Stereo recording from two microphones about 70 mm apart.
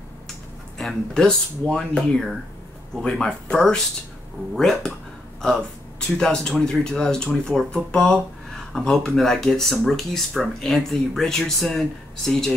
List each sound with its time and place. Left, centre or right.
0.7 s speech: centre
6.1 s speech: centre